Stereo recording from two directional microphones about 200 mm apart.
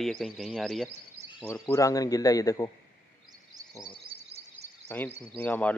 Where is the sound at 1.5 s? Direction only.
15° left (ahead or behind).